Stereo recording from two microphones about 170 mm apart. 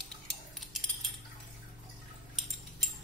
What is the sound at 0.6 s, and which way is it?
Coin, centre (ahead or behind).